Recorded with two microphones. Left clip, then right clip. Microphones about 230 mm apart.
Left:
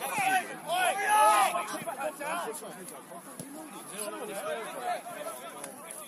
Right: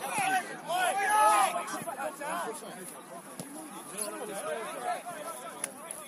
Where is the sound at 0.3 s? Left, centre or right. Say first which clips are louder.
Left 1 dB; centre.